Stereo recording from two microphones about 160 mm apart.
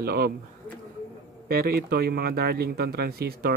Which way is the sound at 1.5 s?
70° right (ahead or behind).